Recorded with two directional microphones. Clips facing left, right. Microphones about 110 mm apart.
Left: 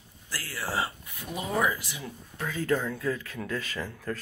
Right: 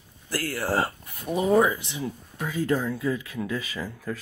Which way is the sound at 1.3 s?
35° right (ahead or behind).